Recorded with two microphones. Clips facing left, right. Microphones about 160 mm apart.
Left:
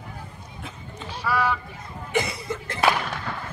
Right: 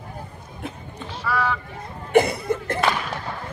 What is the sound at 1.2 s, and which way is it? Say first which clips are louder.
Run: even; centre (ahead or behind).